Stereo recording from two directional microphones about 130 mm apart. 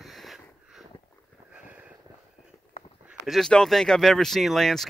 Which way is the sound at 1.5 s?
10° right (ahead or behind).